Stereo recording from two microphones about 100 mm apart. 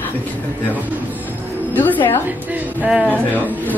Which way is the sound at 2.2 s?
15° right (ahead or behind).